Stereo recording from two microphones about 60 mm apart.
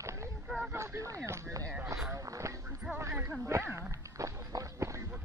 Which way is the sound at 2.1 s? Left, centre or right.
Right.